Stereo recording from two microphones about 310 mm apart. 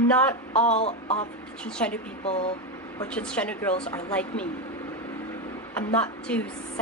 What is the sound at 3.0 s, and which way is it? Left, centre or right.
A woman's voice, centre.